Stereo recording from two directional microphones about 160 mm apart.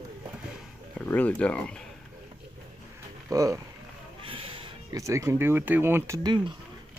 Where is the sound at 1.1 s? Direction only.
10° left (ahead or behind).